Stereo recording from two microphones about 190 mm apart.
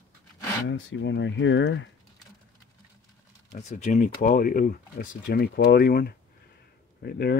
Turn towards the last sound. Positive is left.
turn(degrees=55)  # may be behind; listen again after turning